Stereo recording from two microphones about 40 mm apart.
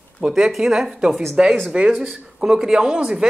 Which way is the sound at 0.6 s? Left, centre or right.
Centre.